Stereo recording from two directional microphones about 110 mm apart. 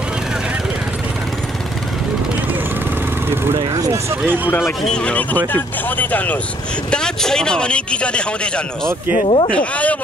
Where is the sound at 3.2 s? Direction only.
20° right (ahead or behind).